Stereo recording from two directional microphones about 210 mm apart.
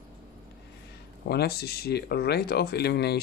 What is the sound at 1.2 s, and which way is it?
Speech, 50° left (ahead or behind).